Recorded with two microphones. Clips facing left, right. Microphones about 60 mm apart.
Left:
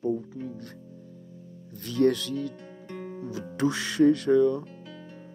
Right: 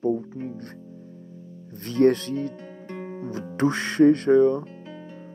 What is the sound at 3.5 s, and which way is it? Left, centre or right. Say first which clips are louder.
Speech: right 4 dB; right.